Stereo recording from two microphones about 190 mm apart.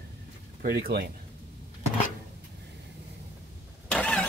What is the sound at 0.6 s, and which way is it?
Speech, 55° right (ahead or behind).